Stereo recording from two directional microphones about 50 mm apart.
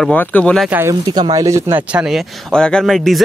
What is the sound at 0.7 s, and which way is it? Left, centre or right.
Speech, right.